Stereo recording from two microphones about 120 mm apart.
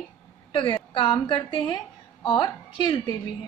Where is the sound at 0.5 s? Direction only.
45° left (ahead or behind).